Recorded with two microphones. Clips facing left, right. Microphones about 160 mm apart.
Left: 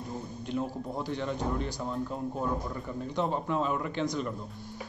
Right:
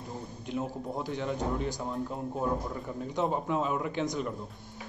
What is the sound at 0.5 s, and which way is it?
A man's voice, 15° right (ahead or behind).